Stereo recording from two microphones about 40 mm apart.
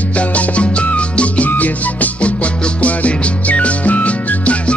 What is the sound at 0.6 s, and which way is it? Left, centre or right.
Music, left.